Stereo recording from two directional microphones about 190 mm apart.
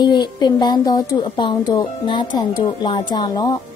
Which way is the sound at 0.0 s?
25° left (ahead or behind).